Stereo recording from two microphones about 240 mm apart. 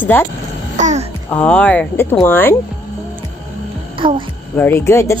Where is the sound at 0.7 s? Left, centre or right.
Right.